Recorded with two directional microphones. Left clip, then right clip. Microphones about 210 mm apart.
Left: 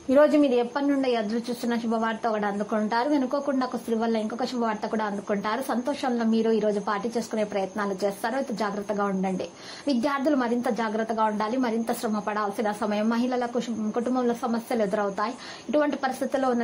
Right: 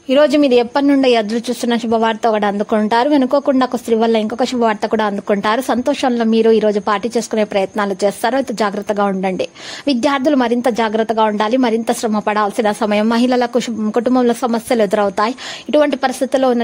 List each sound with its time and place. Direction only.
0.1 s a woman's voice: 45° right (ahead or behind)